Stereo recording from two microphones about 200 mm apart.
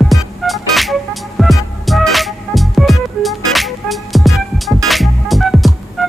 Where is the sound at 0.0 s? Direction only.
Centre (ahead or behind).